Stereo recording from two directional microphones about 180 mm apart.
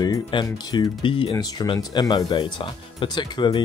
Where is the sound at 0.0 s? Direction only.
25° left (ahead or behind).